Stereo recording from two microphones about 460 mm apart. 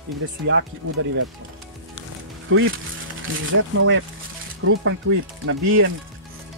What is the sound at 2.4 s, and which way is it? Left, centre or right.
Speech, right.